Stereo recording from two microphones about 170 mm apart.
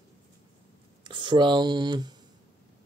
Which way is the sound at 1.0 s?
30° right (ahead or behind).